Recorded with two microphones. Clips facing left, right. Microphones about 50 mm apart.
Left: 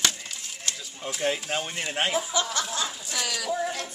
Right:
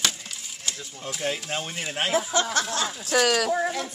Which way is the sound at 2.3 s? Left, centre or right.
Right.